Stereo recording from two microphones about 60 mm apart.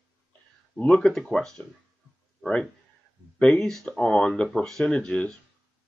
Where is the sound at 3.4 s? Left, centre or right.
Centre.